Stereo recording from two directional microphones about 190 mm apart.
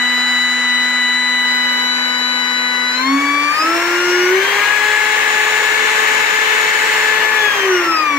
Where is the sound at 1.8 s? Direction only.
5° left (ahead or behind).